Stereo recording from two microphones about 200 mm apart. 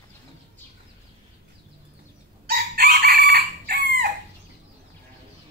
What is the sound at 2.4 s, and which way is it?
Chicken, 50° right (ahead or behind).